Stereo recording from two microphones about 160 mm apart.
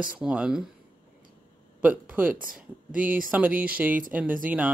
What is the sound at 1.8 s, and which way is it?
Speech, 10° right (ahead or behind).